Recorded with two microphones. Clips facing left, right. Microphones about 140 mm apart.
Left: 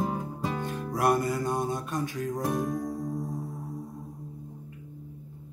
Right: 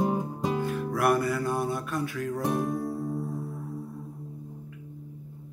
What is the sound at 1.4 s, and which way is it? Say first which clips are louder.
Mantra: right 1 dB; 20° left (ahead or behind).